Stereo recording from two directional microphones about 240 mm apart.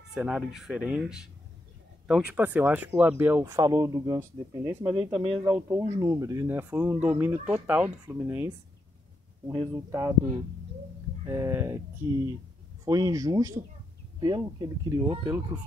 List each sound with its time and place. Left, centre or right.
0.1 s speech: centre
11.2 s speech: centre
12.8 s speech: centre